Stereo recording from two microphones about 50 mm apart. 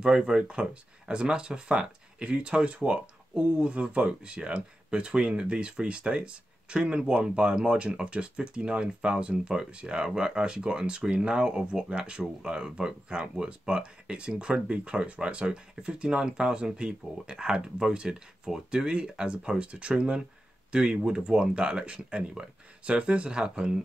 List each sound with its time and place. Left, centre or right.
0.0 s speech: centre